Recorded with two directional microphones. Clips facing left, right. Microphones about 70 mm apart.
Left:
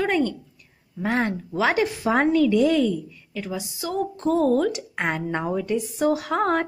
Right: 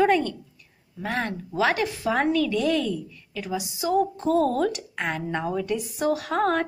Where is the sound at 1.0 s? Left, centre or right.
Centre.